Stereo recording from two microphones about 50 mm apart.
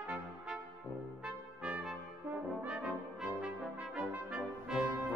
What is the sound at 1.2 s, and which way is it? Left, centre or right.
Brass instrument, centre.